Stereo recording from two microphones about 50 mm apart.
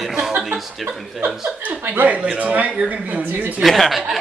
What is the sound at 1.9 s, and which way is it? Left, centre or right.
A man's voice, right.